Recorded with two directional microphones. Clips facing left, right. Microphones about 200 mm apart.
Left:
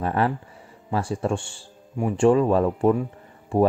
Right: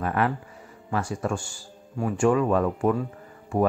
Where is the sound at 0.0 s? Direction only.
30° left (ahead or behind).